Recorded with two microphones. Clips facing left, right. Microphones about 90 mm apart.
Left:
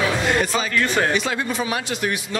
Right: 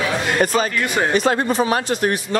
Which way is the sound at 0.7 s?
15° right (ahead or behind).